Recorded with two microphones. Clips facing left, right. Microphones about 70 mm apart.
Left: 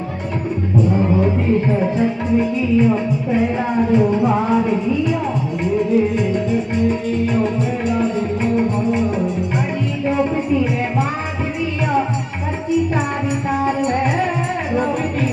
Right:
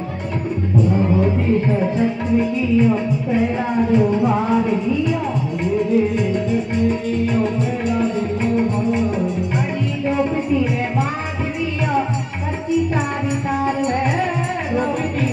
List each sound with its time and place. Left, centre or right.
0.8 s music: left
10.0 s music: left
13.5 s music: centre